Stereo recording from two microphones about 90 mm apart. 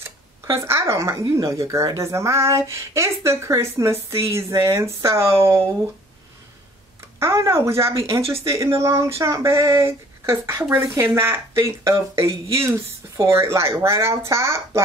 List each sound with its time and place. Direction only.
0.0 s a sound: 30° right (ahead or behind)
1.3 s speech: 35° right (ahead or behind)
7.2 s speech: 30° right (ahead or behind)